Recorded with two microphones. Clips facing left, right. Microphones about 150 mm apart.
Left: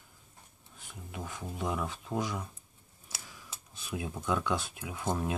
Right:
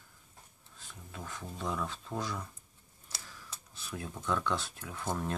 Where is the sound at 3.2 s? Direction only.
15° left (ahead or behind).